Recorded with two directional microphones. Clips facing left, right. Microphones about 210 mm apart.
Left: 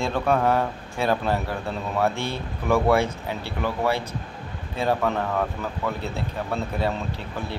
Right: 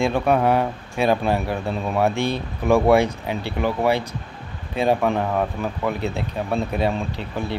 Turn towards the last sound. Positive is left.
turn(degrees=-15)  # may be behind; listen again after turning